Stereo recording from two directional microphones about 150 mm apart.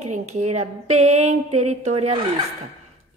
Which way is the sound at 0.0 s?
50° right (ahead or behind).